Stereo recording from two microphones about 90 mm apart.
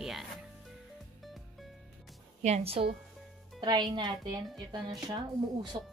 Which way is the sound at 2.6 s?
90° right.